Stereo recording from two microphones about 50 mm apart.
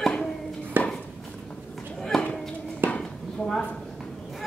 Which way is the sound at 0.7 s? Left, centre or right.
Right.